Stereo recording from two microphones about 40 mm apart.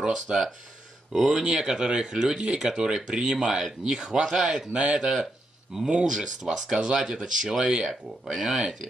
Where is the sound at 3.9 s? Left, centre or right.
Centre.